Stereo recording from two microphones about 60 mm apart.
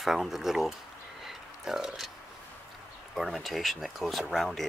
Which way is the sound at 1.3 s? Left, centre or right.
Centre.